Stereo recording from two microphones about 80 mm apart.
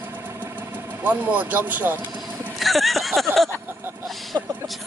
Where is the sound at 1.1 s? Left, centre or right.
Right.